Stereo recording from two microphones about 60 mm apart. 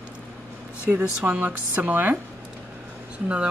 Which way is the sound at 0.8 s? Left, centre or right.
Right.